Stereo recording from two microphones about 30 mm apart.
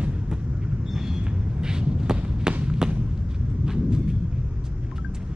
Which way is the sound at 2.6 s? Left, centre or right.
Right.